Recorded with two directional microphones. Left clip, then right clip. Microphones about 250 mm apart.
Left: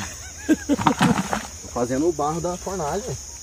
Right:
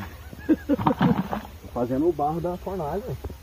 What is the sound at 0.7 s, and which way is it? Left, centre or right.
Speech, centre.